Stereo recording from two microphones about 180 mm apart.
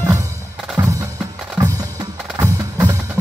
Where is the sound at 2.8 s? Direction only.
15° right (ahead or behind).